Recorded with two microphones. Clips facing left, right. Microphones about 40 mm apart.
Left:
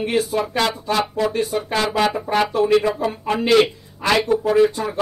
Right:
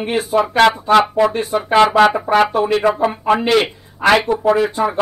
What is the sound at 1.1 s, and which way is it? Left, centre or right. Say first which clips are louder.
Speech: right 5 dB; right.